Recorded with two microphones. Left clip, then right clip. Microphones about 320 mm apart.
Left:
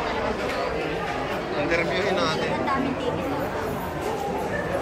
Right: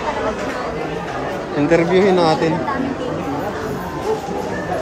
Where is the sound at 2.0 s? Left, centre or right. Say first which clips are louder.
Right 10 dB; centre.